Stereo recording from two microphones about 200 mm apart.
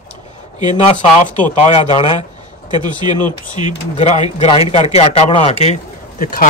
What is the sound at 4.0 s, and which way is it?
Speech, 30° left (ahead or behind).